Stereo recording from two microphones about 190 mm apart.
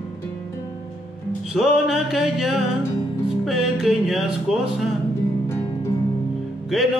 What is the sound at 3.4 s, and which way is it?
Mantra, centre (ahead or behind).